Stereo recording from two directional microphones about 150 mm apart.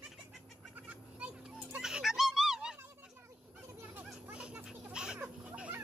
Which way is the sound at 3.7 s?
15° right (ahead or behind).